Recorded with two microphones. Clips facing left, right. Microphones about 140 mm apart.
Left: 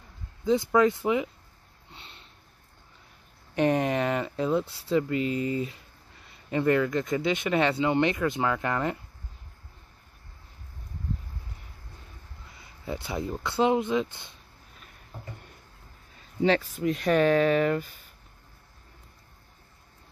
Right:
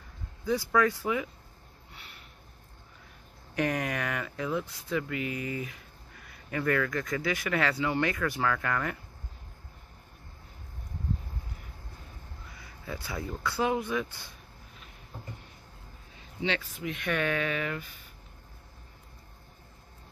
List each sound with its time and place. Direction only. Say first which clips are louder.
0.5 s speech: left 4 dB; 20° left (ahead or behind)
1.9 s snort: left 3 dB; 25° left (ahead or behind)
3.5 s speech: left 6 dB; 30° left (ahead or behind)
12.4 s speech: left 5 dB; 25° left (ahead or behind)
16.2 s speech: left 8 dB; 40° left (ahead or behind)